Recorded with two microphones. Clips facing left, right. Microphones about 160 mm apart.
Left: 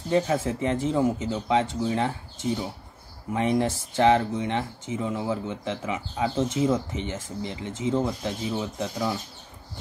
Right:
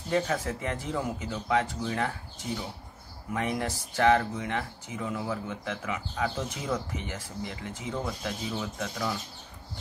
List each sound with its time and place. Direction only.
0.1 s speech: 25° left (ahead or behind)
3.3 s speech: 25° left (ahead or behind)